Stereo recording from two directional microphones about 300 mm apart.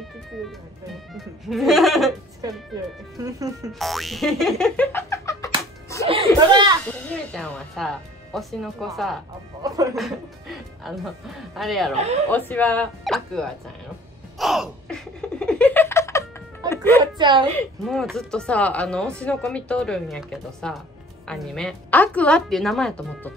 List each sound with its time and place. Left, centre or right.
1.1 s speech: centre
3.2 s speech: centre
3.7 s boing: centre
6.0 s music: centre
6.9 s speech: centre
9.6 s speech: centre
9.9 s speech: centre
11.9 s speech: right
12.3 s speech: centre
14.4 s laughter: centre
17.0 s speech: centre
17.6 s speech: centre